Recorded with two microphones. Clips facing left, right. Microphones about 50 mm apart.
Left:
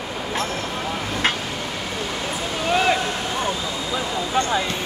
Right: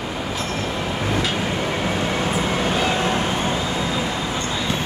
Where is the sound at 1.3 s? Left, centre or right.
Right.